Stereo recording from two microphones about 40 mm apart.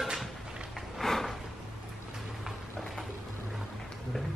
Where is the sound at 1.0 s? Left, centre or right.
Centre.